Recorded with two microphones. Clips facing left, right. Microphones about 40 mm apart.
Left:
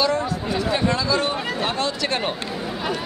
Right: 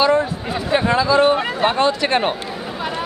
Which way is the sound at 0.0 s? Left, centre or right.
Right.